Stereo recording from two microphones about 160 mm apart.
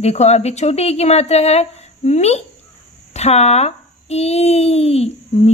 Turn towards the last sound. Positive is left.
turn(degrees=40)  # may be behind; listen again after turning